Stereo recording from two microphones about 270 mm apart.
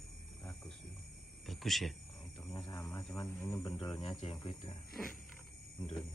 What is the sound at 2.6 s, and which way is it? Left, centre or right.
Speech, centre.